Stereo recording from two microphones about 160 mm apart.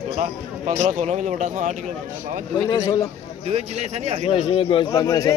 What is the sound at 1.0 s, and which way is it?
Speech, 45° right (ahead or behind).